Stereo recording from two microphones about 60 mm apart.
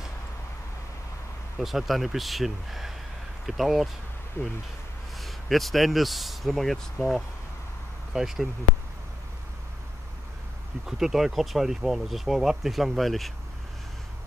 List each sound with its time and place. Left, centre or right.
1.6 s speech: centre
4.4 s speech: left
5.2 s speech: centre
10.9 s speech: centre